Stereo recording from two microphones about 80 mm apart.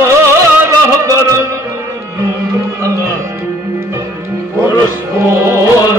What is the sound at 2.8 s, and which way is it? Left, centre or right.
Music, right.